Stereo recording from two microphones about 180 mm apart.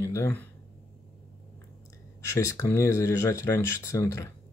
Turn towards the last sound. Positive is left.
turn(degrees=15)  # may be behind; listen again after turning